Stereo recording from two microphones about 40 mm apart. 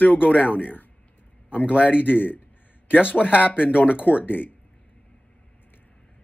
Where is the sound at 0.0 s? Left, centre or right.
Left.